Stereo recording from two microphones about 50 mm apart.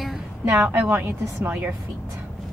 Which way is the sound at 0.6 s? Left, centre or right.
Right.